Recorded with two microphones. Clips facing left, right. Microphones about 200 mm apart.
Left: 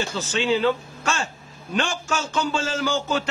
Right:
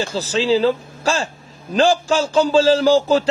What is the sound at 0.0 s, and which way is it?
A man's voice, 35° right (ahead or behind).